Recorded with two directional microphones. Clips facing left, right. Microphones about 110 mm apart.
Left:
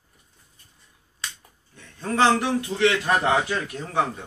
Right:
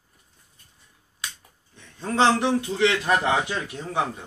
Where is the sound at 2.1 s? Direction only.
20° right (ahead or behind).